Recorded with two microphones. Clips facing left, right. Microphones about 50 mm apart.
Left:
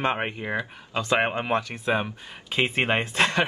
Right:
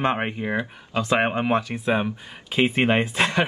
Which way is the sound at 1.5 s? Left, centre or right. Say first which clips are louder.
Right 3 dB; centre.